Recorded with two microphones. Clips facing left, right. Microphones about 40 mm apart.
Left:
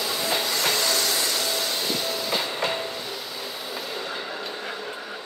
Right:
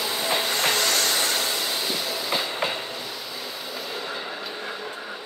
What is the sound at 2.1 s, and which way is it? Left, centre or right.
Train, centre.